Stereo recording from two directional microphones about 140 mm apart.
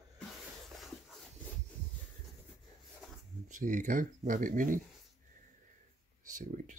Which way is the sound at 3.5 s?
65° right (ahead or behind).